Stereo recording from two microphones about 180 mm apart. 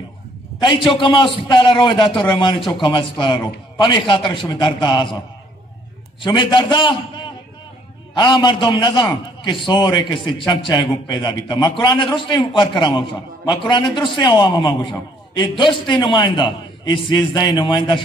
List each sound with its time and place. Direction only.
0.6 s a man's voice: 25° left (ahead or behind)
6.2 s a man's voice: 25° left (ahead or behind)